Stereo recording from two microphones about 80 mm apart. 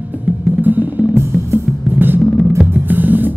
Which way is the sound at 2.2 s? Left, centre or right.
Centre.